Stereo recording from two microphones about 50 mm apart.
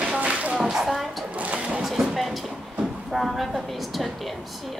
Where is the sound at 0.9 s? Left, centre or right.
Centre.